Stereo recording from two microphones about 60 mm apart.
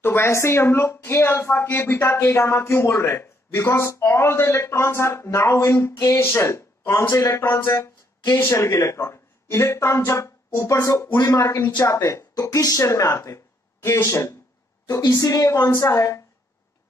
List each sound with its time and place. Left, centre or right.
0.0 s speech: left
12.8 s speech: left
14.0 s speech: left
15.1 s a woman's voice: left
15.5 s speech: left
15.8 s speech: left